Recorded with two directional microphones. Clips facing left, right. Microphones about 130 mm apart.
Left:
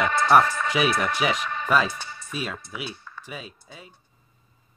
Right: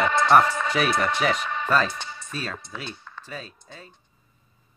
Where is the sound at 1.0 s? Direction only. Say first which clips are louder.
Right 1 dB; 10° left (ahead or behind).